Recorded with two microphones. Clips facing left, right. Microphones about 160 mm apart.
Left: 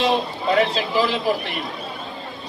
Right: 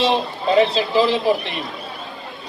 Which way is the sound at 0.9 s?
20° right (ahead or behind).